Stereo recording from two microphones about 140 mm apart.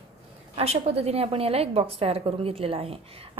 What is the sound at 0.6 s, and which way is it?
A woman's voice, 45° right (ahead or behind).